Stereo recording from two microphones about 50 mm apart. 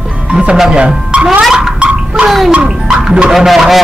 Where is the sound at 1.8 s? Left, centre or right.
Right.